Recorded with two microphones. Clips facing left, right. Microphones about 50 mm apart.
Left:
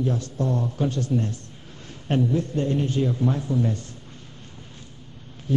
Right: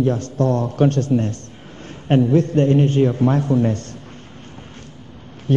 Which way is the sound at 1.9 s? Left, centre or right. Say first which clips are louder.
Right 7 dB; right.